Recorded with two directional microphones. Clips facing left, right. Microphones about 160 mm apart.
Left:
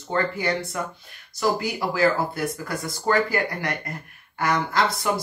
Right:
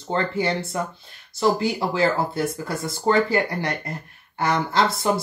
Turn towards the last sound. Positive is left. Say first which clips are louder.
# right 2 dB
turn(degrees=-30)  # may be behind; listen again after turning